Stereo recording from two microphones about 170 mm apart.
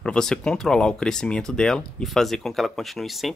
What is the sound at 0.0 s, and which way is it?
Speech, 5° left (ahead or behind).